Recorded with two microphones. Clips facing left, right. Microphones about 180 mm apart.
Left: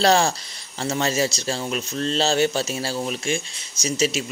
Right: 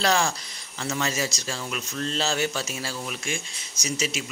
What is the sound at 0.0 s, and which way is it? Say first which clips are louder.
A man's voice: left 5 dB; 30° left (ahead or behind).